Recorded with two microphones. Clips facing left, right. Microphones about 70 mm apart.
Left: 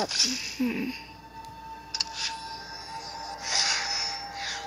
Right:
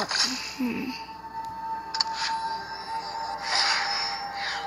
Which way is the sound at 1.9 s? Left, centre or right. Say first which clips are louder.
Right 7 dB; right.